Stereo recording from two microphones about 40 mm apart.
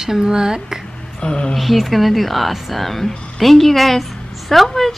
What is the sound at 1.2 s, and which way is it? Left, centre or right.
Speech, left.